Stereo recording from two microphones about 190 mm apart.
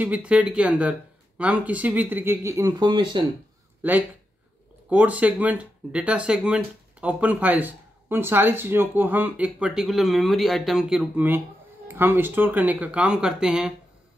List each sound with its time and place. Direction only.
0.0 s speech: 5° right (ahead or behind); by 3.3 s 25° right (ahead or behind)
3.8 s speech: 10° right (ahead or behind)